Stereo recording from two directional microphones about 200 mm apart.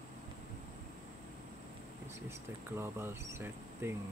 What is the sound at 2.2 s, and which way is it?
Speech, 10° right (ahead or behind).